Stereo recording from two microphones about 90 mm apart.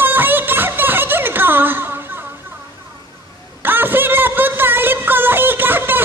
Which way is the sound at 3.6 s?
25° right (ahead or behind).